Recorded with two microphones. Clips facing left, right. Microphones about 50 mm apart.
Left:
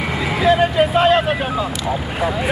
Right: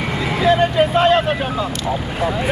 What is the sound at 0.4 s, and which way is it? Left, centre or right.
Speech, centre.